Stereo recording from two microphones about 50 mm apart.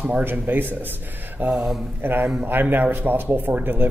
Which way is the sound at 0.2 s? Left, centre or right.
Right.